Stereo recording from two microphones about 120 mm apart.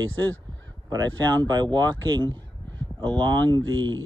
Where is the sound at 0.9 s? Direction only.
35° right (ahead or behind).